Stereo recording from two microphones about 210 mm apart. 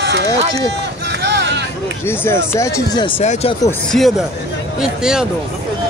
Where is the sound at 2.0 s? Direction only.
10° left (ahead or behind); by 3.5 s 30° left (ahead or behind).